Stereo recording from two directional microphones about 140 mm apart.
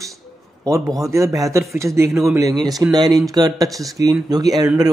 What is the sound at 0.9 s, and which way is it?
A man's voice, 25° right (ahead or behind).